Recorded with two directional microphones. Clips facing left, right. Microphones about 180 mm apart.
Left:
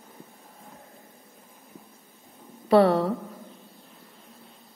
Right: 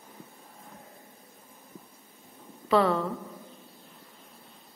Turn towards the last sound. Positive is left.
turn(degrees=35)  # may be behind; listen again after turning